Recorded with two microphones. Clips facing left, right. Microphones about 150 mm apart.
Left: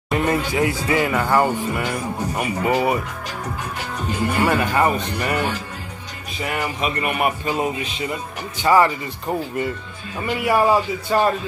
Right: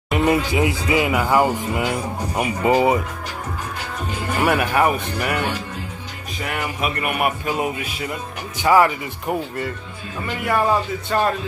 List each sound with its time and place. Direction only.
0.1 s a sound: 15° right (ahead or behind)
0.5 s speech: 20° right (ahead or behind)
4.4 s speech: 10° right (ahead or behind)
10.2 s a man's voice: 10° left (ahead or behind)